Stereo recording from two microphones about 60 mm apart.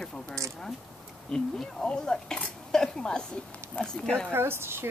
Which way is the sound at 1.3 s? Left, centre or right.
Centre.